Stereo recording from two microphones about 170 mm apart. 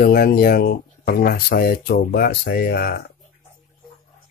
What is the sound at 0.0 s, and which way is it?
Speech, 65° left (ahead or behind).